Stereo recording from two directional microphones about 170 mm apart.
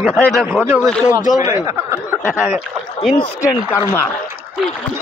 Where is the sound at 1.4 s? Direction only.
15° right (ahead or behind).